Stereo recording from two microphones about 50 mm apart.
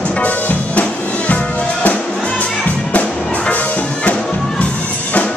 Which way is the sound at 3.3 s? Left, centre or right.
Left.